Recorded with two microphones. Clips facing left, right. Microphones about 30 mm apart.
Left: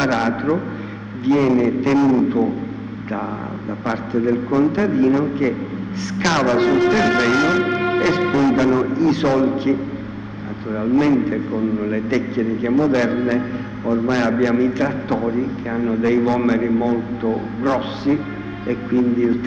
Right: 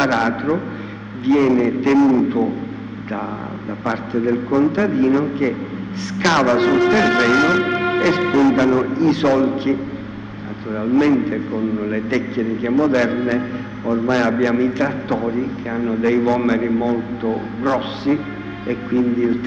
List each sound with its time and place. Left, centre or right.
0.0 s a man's voice: centre
4.7 s a man's voice: centre
8.0 s music: centre
8.4 s a man's voice: centre
13.4 s a man's voice: right
14.0 s a man's voice: centre